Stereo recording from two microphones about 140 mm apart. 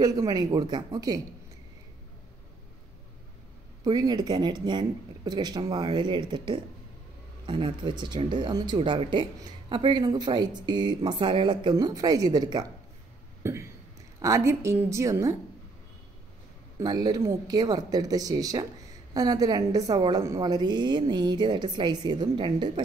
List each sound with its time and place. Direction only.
0.0 s speech: 25° right (ahead or behind)
3.8 s speech: 30° right (ahead or behind)
13.4 s a sound: 20° right (ahead or behind)
14.2 s speech: 20° right (ahead or behind)
16.8 s speech: 30° right (ahead or behind)